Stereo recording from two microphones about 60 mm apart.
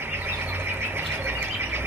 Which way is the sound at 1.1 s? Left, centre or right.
Right.